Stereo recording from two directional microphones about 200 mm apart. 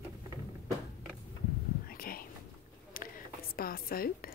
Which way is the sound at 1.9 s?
45° left (ahead or behind).